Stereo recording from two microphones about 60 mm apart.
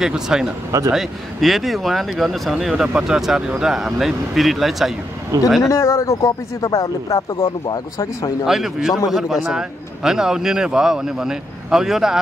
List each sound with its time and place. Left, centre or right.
0.0 s a man's voice: centre
0.7 s speech: right
0.9 s a man's voice: centre
5.6 s speech: left
8.5 s a man's voice: centre